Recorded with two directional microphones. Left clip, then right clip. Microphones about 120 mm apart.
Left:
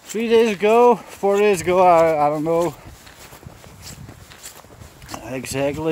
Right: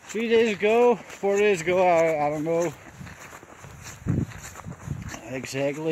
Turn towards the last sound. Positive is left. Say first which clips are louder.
# left 5 dB
turn(degrees=35)  # may be behind; listen again after turning